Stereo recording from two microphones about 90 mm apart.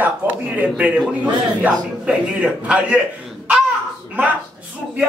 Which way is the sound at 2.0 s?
15° right (ahead or behind).